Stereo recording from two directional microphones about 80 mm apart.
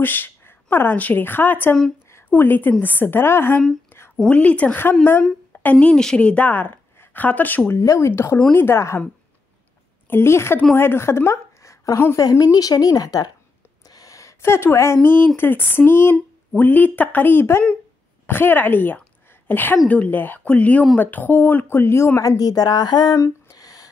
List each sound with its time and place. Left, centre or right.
0.0 s a woman's voice: left
4.3 s a woman's voice: centre
7.7 s a woman's voice: left
10.0 s a woman's voice: left
12.3 s speech: left
13.8 s a sound: left
15.0 s a woman's voice: left
22.4 s speech: left
23.1 s a sound: left